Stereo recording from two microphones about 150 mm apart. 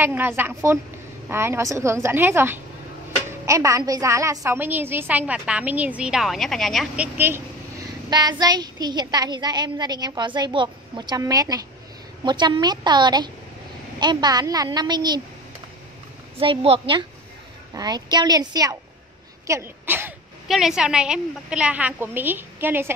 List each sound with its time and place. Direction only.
0.0 s a woman's voice: 15° right (ahead or behind)
7.2 s a woman's voice: 15° right (ahead or behind)
8.1 s a woman's voice: 25° right (ahead or behind)
16.3 s a woman's voice: 40° right (ahead or behind)
17.7 s a woman's voice: 25° right (ahead or behind)
19.4 s a sound: 20° right (ahead or behind)
20.4 s a woman's voice: centre (ahead or behind)